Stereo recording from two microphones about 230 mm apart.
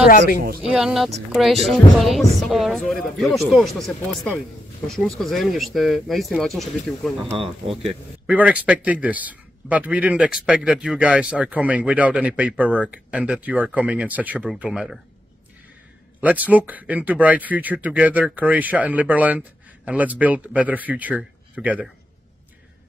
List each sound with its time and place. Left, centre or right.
0.6 s speech: centre
7.3 s speech: right
8.3 s speech: centre
16.2 s speech: centre